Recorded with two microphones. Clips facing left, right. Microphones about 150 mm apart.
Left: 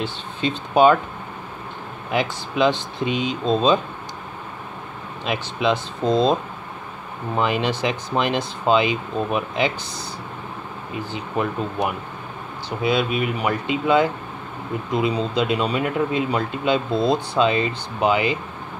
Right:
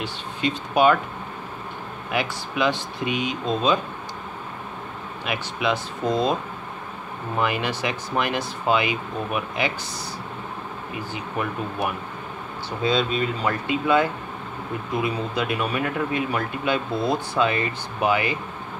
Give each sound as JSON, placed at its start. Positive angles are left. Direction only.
{"t": 0.0, "sound": "speech", "side_deg": 25}
{"t": 2.0, "sound": "speech", "side_deg": 25}
{"t": 5.2, "sound": "speech", "side_deg": 25}
{"t": 7.3, "sound": "speech", "side_deg": 25}
{"t": 11.8, "sound": "speech", "side_deg": 20}